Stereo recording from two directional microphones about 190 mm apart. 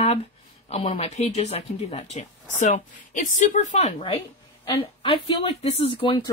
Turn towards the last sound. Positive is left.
turn(degrees=25)  # may be behind; listen again after turning